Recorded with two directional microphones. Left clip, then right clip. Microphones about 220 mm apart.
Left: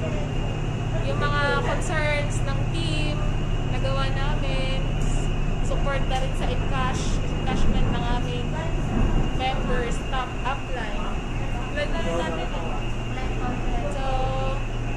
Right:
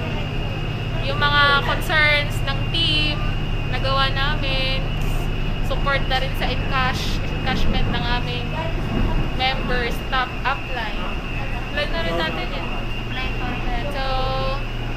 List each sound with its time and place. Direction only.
1.0 s vehicle: 15° right (ahead or behind)
6.4 s speech: 25° right (ahead or behind)